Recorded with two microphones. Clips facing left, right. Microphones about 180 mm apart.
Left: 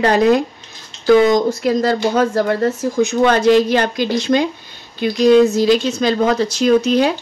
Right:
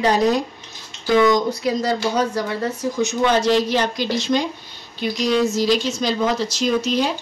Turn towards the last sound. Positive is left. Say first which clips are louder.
# left 6 dB
turn(degrees=60)  # may be behind; listen again after turning